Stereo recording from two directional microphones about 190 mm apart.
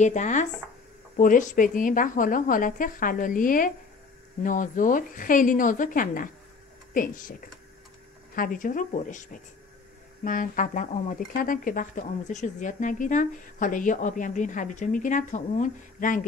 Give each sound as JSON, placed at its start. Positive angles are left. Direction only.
{"t": 0.0, "sound": "speech", "side_deg": 40}